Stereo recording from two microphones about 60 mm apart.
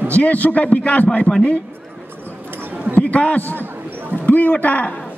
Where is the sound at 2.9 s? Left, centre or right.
Left.